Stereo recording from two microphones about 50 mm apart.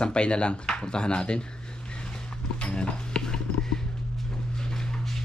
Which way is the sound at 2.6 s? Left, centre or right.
Centre.